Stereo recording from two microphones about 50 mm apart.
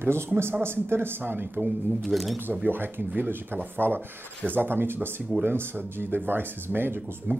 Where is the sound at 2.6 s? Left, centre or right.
Right.